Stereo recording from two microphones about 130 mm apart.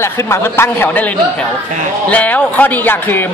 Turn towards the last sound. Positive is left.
turn(degrees=15)  # may be behind; listen again after turning